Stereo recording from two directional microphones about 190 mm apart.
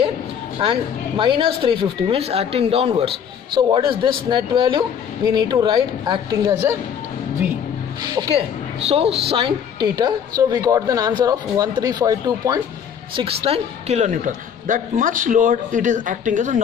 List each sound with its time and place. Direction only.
0.6 s a woman's voice: 30° right (ahead or behind)
8.1 s a woman's voice: 20° right (ahead or behind)
13.1 s a woman's voice: 30° right (ahead or behind)